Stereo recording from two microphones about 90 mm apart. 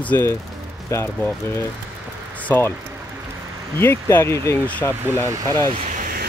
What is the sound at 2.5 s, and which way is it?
Speech, 25° left (ahead or behind).